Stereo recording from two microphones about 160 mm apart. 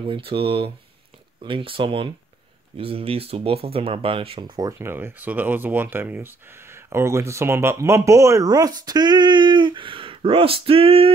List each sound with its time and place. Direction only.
0.0 s speech: 30° right (ahead or behind)